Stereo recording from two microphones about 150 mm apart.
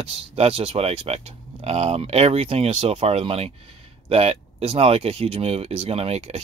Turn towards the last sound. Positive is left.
turn(degrees=-45)  # may be behind; listen again after turning